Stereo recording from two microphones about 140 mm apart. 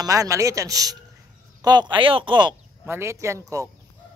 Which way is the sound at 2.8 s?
15° right (ahead or behind).